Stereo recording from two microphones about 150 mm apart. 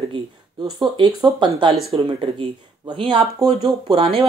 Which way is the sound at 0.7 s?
30° right (ahead or behind).